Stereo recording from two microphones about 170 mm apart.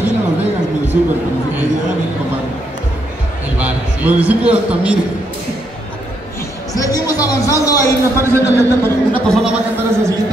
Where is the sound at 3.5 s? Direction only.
10° right (ahead or behind).